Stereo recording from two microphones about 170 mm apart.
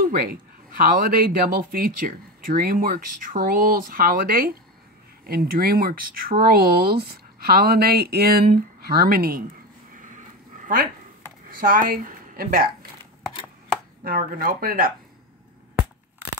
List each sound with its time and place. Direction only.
0.0 s a woman's voice: 60° right (ahead or behind)
9.9 s dog: 50° right (ahead or behind)
11.5 s a woman's voice: 55° right (ahead or behind)
14.0 s a woman's voice: 55° right (ahead or behind)